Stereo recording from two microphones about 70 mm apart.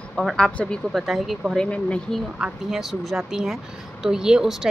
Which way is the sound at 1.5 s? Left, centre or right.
Centre.